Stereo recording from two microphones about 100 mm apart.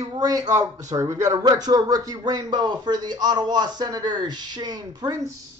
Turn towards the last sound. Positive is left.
turn(degrees=-35)  # may be behind; listen again after turning